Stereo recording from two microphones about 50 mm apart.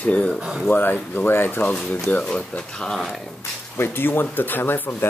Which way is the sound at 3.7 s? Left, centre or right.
Left.